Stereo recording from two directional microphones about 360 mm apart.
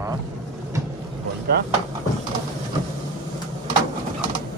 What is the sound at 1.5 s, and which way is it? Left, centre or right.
Speech, right.